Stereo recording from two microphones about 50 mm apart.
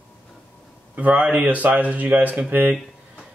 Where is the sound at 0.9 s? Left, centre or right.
Right.